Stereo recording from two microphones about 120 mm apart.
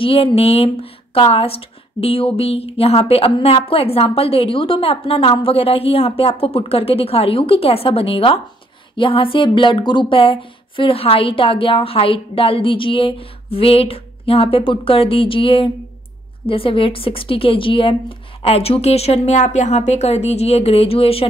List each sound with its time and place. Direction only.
0.0 s a woman's voice: 50° left (ahead or behind)